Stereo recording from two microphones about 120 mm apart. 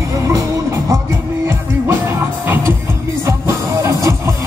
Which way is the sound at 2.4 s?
20° right (ahead or behind).